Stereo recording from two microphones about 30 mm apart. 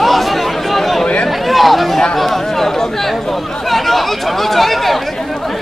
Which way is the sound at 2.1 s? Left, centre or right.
Centre.